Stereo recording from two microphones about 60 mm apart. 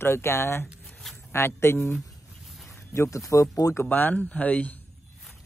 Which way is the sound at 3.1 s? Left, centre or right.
Left.